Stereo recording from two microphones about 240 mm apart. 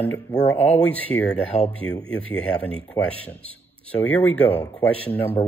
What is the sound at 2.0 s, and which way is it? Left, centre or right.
Speech, centre.